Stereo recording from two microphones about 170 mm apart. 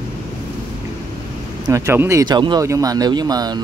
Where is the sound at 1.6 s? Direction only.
15° right (ahead or behind).